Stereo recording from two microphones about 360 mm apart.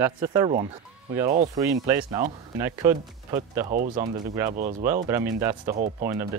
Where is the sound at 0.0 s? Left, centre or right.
Centre.